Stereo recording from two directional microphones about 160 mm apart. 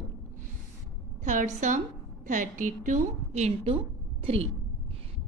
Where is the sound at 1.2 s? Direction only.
50° right (ahead or behind).